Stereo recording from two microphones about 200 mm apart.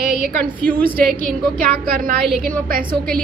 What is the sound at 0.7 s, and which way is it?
Speech, 45° right (ahead or behind).